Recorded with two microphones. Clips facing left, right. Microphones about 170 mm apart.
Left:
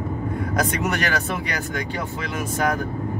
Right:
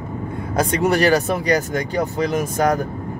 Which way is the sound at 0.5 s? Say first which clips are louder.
Right 7 dB; 30° right (ahead or behind).